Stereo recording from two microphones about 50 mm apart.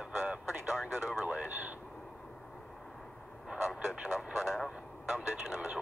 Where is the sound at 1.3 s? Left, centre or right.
Right.